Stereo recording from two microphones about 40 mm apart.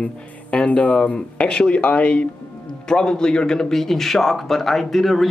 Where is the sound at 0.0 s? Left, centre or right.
Left.